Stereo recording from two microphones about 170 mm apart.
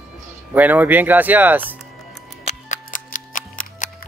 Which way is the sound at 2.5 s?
50° left (ahead or behind).